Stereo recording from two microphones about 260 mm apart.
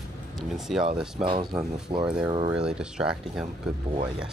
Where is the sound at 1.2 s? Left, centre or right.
Centre.